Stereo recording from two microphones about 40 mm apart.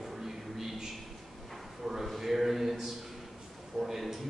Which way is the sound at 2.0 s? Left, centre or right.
Centre.